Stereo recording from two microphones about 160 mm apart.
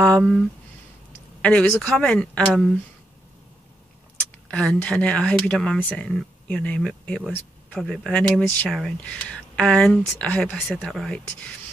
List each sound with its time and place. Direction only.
0.0 s speech: 5° left (ahead or behind)
1.4 s speech: 10° left (ahead or behind)
4.5 s speech: 5° left (ahead or behind)